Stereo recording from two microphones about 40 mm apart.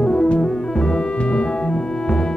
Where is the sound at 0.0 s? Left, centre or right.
Centre.